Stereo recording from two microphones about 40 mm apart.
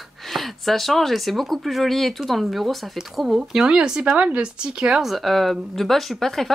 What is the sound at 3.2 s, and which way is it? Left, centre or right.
Speech, centre.